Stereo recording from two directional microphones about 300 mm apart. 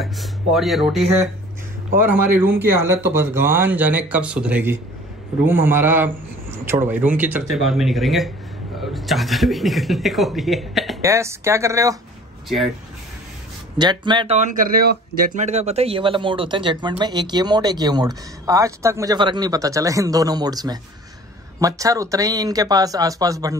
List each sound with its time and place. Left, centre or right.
0.0 s speech: centre
2.3 s speech: centre
13.7 s speech: centre